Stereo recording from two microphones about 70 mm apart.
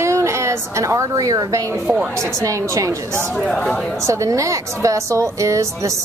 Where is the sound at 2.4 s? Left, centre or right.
Right.